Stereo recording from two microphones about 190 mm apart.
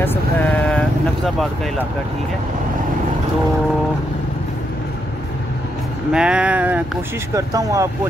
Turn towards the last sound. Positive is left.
turn(degrees=-15)  # may be behind; listen again after turning